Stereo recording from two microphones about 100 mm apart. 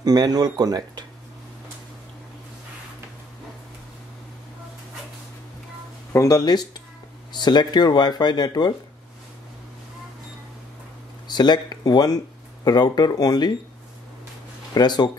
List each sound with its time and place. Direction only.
0.0 s speech: 40° right (ahead or behind)
6.1 s speech: 35° left (ahead or behind)
11.2 s speech: 45° left (ahead or behind)
14.7 s speech: 45° left (ahead or behind)